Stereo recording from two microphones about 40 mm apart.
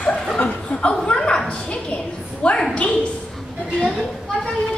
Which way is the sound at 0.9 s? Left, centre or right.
Centre.